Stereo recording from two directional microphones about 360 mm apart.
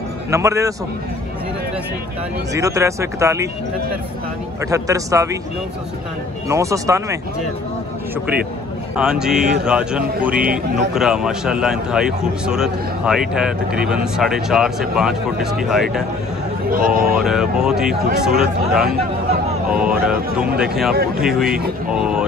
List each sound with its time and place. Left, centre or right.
0.3 s speech: centre
2.5 s speech: centre
4.6 s speech: centre
6.5 s speech: centre
8.9 s a man's voice: centre
16.6 s speech: right
17.2 s a man's voice: centre